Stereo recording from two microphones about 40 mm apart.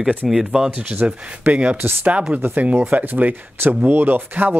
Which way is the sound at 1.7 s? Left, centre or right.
Right.